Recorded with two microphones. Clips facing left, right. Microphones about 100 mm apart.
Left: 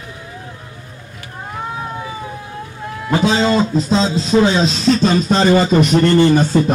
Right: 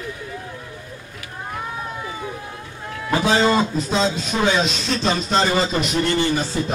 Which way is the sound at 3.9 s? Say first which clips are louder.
Left 8 dB; 30° left (ahead or behind).